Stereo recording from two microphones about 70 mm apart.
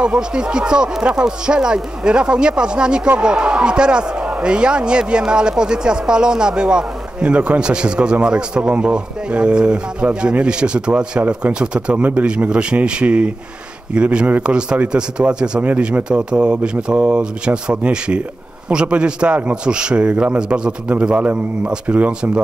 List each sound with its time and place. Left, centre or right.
0.0 s a man's voice: centre